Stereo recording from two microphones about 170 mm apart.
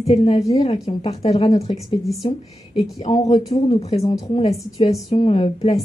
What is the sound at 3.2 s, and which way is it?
Speech, 35° left (ahead or behind).